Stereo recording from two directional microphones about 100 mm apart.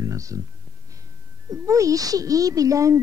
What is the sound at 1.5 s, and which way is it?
Speech, 35° right (ahead or behind).